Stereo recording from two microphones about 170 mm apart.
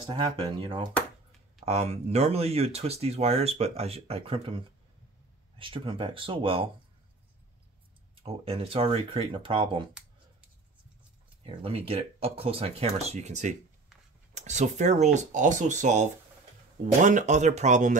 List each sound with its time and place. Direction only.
0.1 s speech: 30° right (ahead or behind)
8.5 s speech: 35° right (ahead or behind)
11.4 s speech: 35° right (ahead or behind)